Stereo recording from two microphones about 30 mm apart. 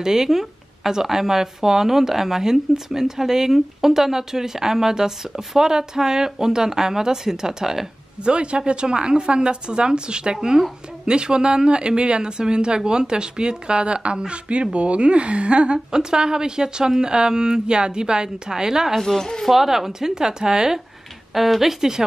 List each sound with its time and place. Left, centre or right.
0.0 s speech: centre
8.2 s speech: right
15.9 s a woman's voice: right
18.9 s speech: centre
19.5 s speech: centre
19.9 s a woman's voice: right
21.3 s speech: centre